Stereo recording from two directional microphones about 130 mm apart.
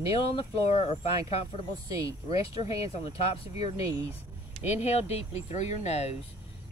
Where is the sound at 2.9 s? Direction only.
45° left (ahead or behind).